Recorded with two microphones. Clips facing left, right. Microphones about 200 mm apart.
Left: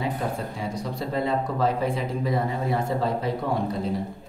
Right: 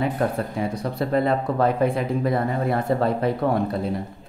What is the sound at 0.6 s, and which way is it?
Speech, 60° right (ahead or behind).